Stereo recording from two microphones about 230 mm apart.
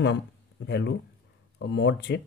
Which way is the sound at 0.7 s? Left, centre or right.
Left.